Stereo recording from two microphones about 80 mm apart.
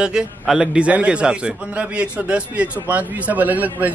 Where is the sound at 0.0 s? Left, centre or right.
Centre.